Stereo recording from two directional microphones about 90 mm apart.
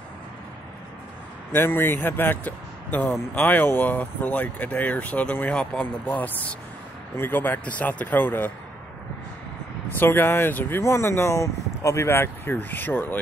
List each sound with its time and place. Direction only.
1.5 s speech: 25° left (ahead or behind)
9.8 s speech: 25° left (ahead or behind)